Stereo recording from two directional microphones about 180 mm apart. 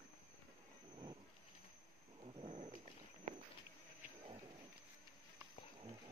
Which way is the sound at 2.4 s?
35° right (ahead or behind).